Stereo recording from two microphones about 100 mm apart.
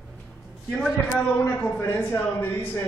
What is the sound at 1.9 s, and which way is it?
Speech, 20° left (ahead or behind).